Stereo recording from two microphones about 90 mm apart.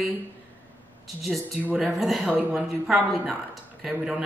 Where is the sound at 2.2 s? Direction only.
15° right (ahead or behind).